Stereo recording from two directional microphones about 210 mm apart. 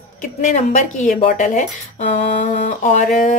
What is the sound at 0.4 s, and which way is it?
Speech, 35° left (ahead or behind).